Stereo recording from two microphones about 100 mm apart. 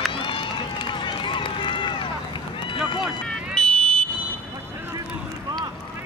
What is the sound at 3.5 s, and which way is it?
Car alarm, 5° left (ahead or behind).